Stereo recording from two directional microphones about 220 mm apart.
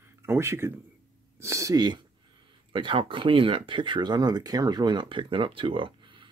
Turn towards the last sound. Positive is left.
turn(degrees=-25)  # may be behind; listen again after turning